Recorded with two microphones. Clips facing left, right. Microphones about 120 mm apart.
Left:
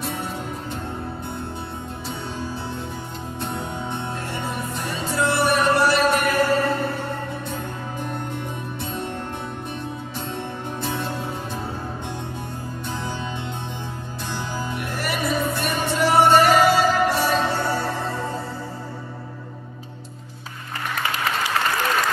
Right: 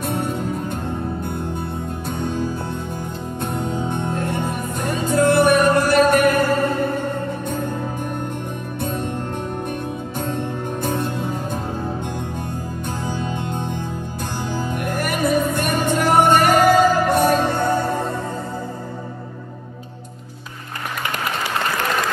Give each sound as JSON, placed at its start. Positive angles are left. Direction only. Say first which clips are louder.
{"t": 0.0, "sound": "music", "louder": "right 6 dB", "side_deg": -55}
{"t": 2.0, "sound": "music", "louder": "right 7 dB", "side_deg": -50}
{"t": 10.1, "sound": "music", "louder": "right 7 dB", "side_deg": -50}
{"t": 13.0, "sound": "music", "louder": "right 4 dB", "side_deg": -50}